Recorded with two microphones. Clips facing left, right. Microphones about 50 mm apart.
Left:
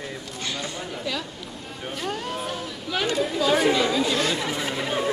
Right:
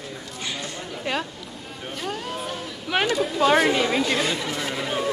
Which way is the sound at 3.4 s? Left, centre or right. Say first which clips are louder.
Right 4 dB; right.